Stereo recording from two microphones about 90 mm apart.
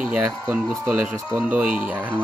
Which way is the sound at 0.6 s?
10° right (ahead or behind).